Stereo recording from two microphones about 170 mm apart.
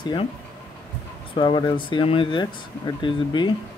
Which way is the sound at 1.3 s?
30° left (ahead or behind).